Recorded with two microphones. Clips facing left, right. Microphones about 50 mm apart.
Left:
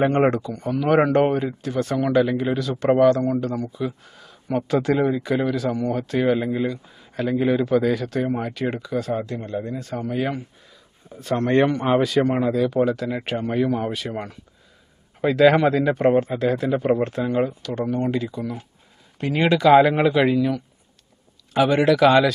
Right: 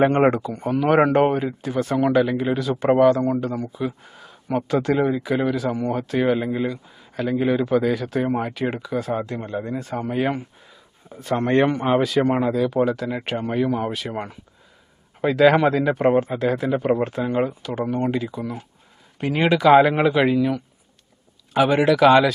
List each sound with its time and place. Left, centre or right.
0.0 s speech: centre
9.4 s speech: right
9.7 s speech: centre